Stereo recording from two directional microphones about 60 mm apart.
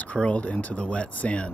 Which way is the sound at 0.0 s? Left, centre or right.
Left.